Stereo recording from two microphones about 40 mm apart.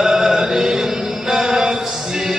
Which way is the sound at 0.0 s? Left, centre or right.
Centre.